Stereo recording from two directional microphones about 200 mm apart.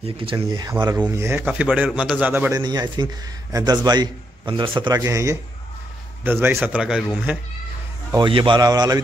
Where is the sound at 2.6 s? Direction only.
20° right (ahead or behind); by 7.4 s 5° right (ahead or behind).